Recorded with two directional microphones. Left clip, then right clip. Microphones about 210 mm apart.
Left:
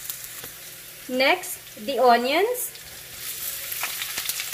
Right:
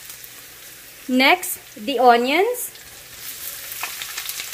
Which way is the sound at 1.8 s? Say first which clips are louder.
Right 4 dB; 60° right (ahead or behind).